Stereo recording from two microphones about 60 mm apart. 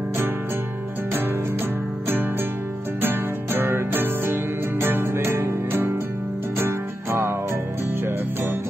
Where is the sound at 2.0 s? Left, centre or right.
Right.